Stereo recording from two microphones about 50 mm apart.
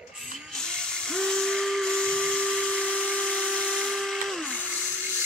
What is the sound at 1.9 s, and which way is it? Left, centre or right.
Steam whistle, centre.